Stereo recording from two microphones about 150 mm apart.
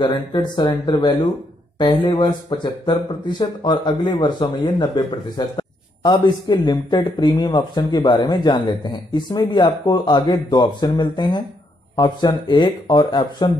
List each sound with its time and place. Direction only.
0.0 s speech: 30° left (ahead or behind)